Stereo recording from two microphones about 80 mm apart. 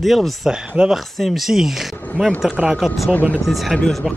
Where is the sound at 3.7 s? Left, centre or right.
Centre.